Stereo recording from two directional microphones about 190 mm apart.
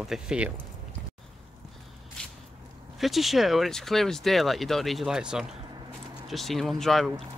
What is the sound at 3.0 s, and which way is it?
Speech, centre (ahead or behind).